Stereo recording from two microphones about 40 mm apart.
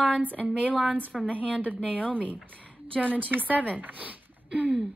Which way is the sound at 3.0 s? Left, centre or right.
Right.